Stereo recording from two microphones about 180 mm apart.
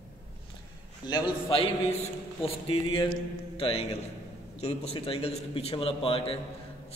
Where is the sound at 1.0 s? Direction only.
25° left (ahead or behind).